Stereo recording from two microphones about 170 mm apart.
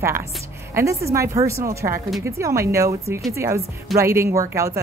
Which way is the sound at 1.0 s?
15° right (ahead or behind).